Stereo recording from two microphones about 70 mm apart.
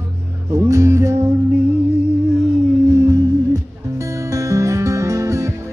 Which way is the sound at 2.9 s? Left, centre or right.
Right.